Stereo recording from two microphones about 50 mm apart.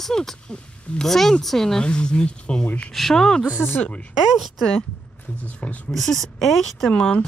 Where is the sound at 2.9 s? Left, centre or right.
Centre.